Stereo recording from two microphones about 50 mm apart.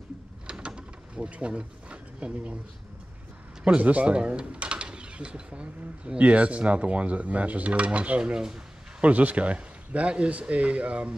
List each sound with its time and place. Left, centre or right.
0.5 s a sound: right
3.6 s speech: right
8.2 s speech: centre
9.0 s speech: right